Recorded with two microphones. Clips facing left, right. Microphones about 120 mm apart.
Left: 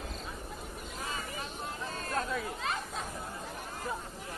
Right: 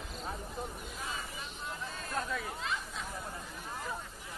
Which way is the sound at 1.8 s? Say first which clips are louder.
Left 3 dB; 40° left (ahead or behind).